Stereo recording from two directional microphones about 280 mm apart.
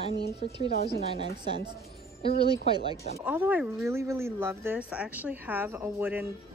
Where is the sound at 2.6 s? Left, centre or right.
Centre.